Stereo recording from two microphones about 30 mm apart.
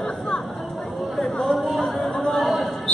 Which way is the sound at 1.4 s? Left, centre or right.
Centre.